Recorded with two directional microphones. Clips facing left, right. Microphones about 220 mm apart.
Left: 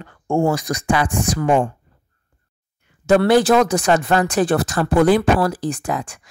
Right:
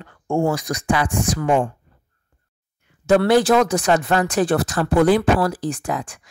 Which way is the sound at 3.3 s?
35° left (ahead or behind).